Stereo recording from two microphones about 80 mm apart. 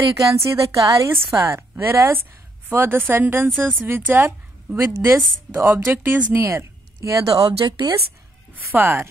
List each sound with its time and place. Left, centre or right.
0.4 s a woman's voice: right
1.1 s a woman's voice: right
4.8 s a woman's voice: right
5.6 s a woman's voice: right
6.4 s speech: right
8.7 s a woman's voice: right